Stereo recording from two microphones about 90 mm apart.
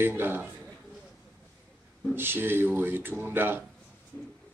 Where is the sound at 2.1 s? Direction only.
25° right (ahead or behind).